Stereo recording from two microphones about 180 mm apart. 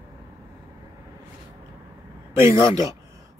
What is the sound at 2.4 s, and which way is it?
Speech, 15° right (ahead or behind).